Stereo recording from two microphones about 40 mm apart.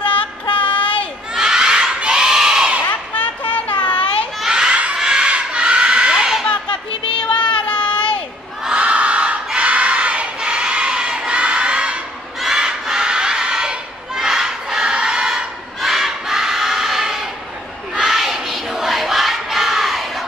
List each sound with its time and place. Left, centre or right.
0.0 s child singing: left
1.3 s crowd: centre
2.9 s children playing: left
4.5 s crowd: right
7.2 s child singing: left
8.7 s crowd: right
12.5 s a sound: centre
14.1 s crowd: centre
15.8 s crowd: centre
17.9 s choir: centre